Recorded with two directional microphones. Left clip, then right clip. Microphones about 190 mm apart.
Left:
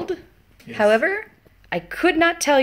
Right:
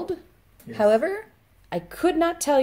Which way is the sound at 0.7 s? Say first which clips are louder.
Left 3 dB; 5° right (ahead or behind).